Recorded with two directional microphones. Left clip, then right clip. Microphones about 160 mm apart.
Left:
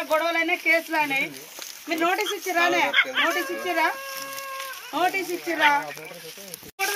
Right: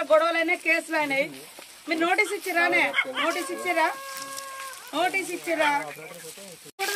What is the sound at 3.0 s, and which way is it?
Speech, 90° right.